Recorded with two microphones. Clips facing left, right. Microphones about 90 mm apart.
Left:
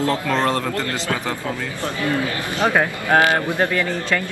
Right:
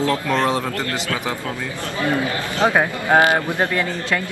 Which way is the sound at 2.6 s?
15° right (ahead or behind).